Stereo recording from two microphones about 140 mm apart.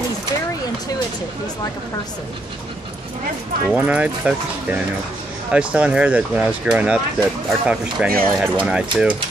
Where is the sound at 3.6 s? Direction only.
10° right (ahead or behind).